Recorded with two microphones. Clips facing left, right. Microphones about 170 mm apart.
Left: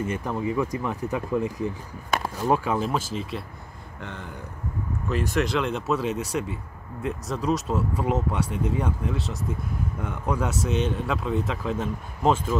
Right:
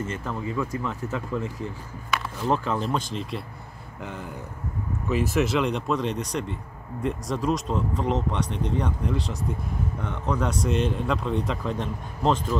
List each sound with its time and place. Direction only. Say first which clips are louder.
0.0 s speech: left 3 dB; 15° left (ahead or behind)